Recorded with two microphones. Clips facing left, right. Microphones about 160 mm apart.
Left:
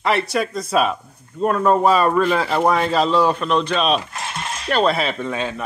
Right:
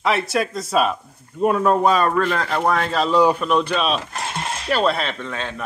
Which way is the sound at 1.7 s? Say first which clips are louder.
Left 3 dB; centre (ahead or behind).